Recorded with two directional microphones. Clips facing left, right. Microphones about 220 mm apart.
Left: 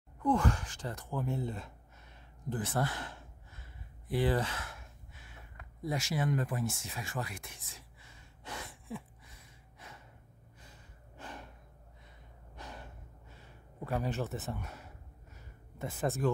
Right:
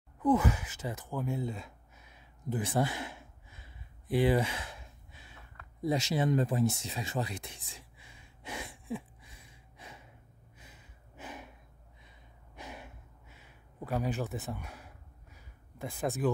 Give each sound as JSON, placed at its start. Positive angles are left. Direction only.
{"t": 0.2, "sound": "speech", "side_deg": -5}
{"t": 2.5, "sound": "a sound", "side_deg": -15}
{"t": 4.1, "sound": "speech", "side_deg": -15}
{"t": 5.9, "sound": "speech", "side_deg": -20}
{"t": 7.4, "sound": "gasp", "side_deg": -15}
{"t": 11.1, "sound": "gasp", "side_deg": -5}
{"t": 12.5, "sound": "gasp", "side_deg": -10}
{"t": 15.3, "sound": "a sound", "side_deg": 0}